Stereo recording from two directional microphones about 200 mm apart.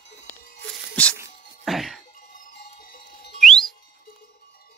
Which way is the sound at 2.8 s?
45° left (ahead or behind).